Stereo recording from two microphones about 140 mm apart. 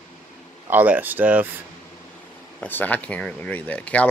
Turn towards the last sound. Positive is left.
turn(degrees=10)  # may be behind; listen again after turning